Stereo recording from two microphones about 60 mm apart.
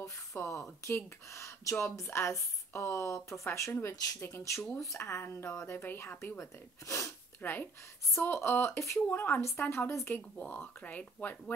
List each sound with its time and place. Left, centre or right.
0.0 s speech: left
2.0 s speech: left
6.9 s speech: left
7.4 s speech: left
8.2 s speech: left
9.1 s a woman's voice: left
9.4 s speech: left
10.3 s speech: left